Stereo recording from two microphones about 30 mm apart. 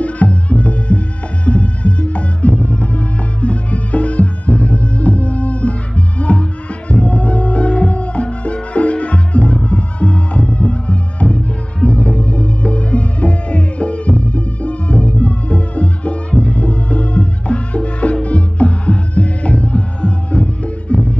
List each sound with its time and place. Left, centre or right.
0.0 s music: left